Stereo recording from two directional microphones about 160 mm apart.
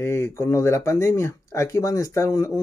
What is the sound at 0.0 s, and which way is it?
Speech, 15° left (ahead or behind).